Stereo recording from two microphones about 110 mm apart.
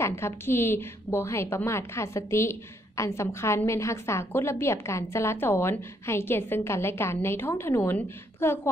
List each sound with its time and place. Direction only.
0.0 s a woman's voice: 25° left (ahead or behind)